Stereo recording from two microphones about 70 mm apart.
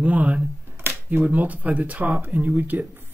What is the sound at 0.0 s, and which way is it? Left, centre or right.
Speech, centre.